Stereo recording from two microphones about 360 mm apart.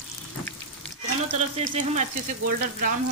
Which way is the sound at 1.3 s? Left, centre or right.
Centre.